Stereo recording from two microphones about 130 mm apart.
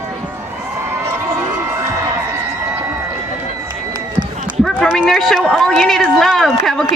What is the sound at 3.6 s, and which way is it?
Run, 30° right (ahead or behind).